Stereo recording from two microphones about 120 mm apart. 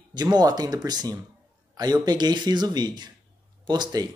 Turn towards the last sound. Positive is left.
turn(degrees=-35)  # may be behind; listen again after turning